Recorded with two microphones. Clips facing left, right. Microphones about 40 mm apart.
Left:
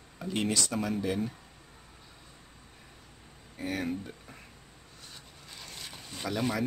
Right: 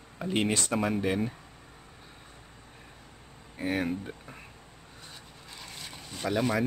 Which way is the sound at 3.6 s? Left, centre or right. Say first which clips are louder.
Right 3 dB; right.